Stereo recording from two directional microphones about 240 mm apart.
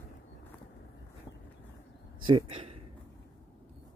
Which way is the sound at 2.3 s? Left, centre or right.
Right.